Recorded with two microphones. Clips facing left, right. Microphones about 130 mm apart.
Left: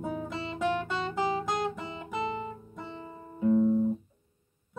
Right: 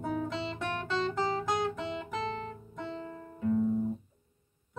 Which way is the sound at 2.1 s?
10° left (ahead or behind).